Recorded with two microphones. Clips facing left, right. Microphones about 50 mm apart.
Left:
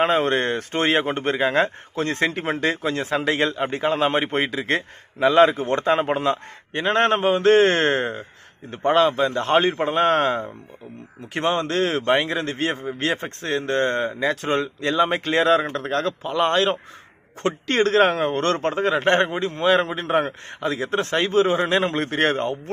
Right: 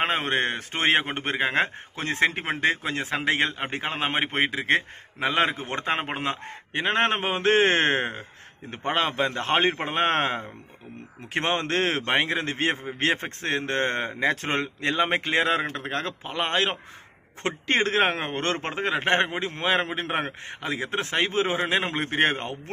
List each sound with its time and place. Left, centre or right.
0.0 s a man's voice: right
12.0 s a man's voice: right
19.5 s a man's voice: right